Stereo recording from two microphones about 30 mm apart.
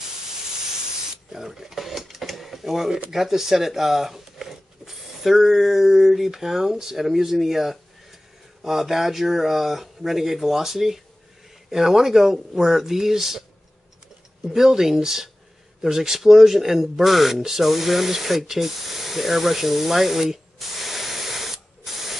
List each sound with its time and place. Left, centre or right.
1.3 s mechanisms: centre
3.1 s a sound: centre
5.4 s speech: centre
14.5 s speech: centre